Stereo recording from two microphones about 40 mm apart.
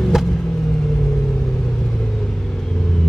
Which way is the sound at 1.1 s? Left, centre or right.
Left.